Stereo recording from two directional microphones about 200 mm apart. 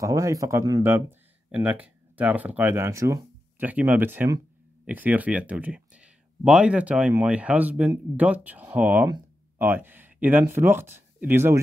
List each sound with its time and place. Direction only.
0.0 s speech: 15° right (ahead or behind)
9.0 s a sound: 20° right (ahead or behind)
9.7 s speech: 10° right (ahead or behind)